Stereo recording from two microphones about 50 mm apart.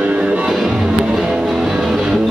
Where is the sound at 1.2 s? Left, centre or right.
Centre.